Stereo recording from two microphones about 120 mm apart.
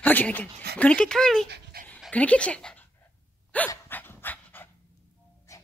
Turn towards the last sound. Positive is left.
turn(degrees=25)  # may be behind; listen again after turning